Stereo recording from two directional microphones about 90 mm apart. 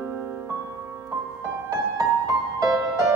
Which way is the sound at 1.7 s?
35° right (ahead or behind).